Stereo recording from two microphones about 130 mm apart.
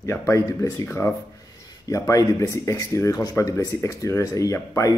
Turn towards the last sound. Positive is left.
turn(degrees=25)  # may be behind; listen again after turning